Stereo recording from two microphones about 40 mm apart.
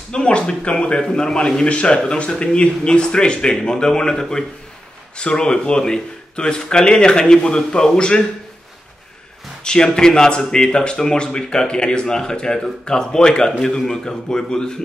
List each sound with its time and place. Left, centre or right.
0.1 s speech: centre
9.9 s speech: centre